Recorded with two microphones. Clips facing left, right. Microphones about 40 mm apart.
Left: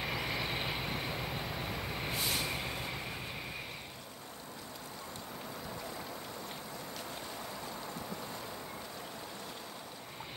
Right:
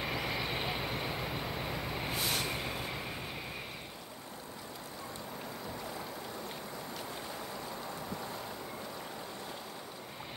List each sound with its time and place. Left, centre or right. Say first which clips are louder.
0.0 s vehicle: right 1 dB; centre